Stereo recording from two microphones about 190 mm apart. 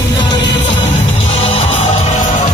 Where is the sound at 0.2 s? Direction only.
25° left (ahead or behind).